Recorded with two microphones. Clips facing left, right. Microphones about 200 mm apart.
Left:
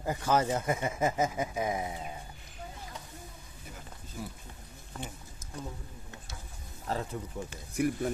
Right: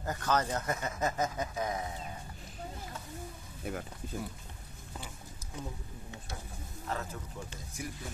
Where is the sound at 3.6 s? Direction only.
60° right (ahead or behind).